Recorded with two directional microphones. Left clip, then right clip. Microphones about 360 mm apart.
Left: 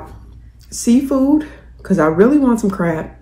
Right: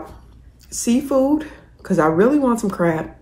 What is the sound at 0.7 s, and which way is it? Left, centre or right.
Speech, centre.